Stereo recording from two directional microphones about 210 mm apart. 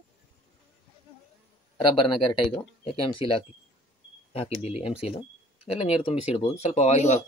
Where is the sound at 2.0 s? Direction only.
25° left (ahead or behind).